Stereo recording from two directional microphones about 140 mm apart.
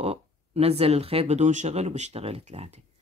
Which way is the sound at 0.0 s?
45° right (ahead or behind).